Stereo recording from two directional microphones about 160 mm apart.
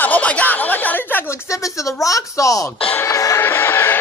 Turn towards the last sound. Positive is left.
turn(degrees=15)  # may be behind; listen again after turning